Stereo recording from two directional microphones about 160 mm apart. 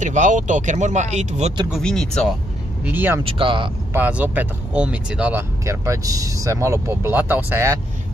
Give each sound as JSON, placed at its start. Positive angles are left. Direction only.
{"t": 0.0, "sound": "speech", "side_deg": -50}
{"t": 1.7, "sound": "speech", "side_deg": 5}
{"t": 2.8, "sound": "speech", "side_deg": -10}
{"t": 3.3, "sound": "speech", "side_deg": -35}
{"t": 3.9, "sound": "speech", "side_deg": -10}